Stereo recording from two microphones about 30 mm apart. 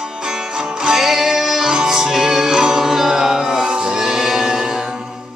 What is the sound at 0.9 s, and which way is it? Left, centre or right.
Music, centre.